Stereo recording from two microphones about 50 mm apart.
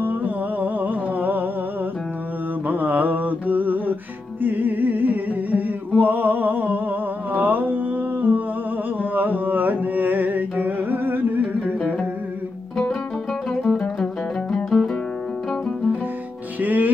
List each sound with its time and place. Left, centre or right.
0.0 s music: right
2.7 s mantra: right
4.4 s music: right
5.9 s a sound: right
7.3 s music: right
9.1 s carnatic music: right
13.5 s music: centre
16.6 s music: right